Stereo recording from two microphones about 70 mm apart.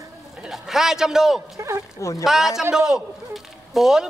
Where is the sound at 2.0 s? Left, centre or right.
Left.